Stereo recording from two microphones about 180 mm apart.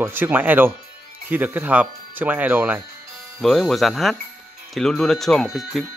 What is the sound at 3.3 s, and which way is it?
Speech, centre (ahead or behind).